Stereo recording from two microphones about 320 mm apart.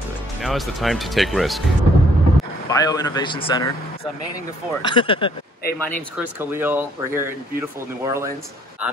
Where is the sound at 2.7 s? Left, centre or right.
Centre.